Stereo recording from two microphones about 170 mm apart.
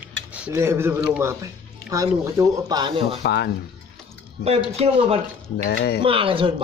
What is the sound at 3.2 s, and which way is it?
Speech, 75° left (ahead or behind).